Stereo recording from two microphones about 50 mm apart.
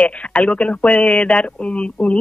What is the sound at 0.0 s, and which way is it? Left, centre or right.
Speech, left.